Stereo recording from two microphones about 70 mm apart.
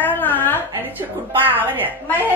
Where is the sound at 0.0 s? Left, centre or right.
Left.